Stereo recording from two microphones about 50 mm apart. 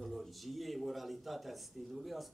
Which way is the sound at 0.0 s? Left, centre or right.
Centre.